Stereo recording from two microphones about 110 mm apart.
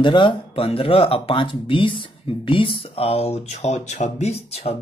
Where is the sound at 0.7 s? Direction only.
60° left (ahead or behind).